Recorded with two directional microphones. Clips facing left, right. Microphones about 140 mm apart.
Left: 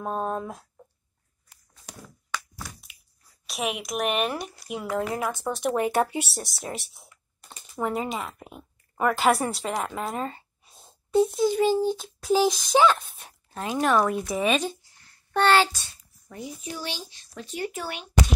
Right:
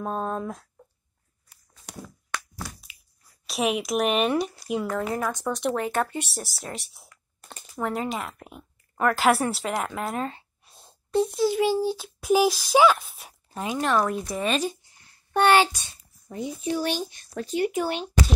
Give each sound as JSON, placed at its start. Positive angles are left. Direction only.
{"t": 0.0, "sound": "speech", "side_deg": 5}
{"t": 3.4, "sound": "speech", "side_deg": 0}
{"t": 5.1, "sound": "speech", "side_deg": 20}
{"t": 6.2, "sound": "speech", "side_deg": 0}
{"t": 13.7, "sound": "speech", "side_deg": 0}
{"t": 14.6, "sound": "a child's voice", "side_deg": -15}
{"t": 16.7, "sound": "a child's voice", "side_deg": -50}
{"t": 17.8, "sound": "speech", "side_deg": -25}